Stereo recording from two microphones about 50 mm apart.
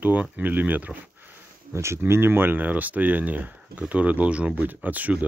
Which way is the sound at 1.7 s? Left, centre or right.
Right.